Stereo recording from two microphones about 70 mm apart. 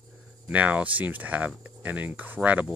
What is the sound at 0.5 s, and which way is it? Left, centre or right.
Speech, right.